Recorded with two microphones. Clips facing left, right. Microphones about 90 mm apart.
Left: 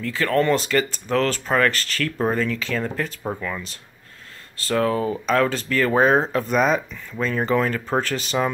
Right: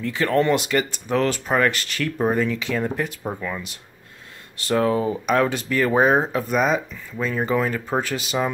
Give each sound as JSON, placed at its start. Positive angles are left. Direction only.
{"t": 0.0, "sound": "speech", "side_deg": -20}